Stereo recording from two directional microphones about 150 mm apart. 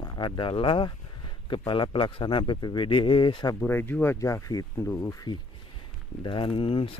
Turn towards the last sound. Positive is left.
turn(degrees=40)  # may be behind; listen again after turning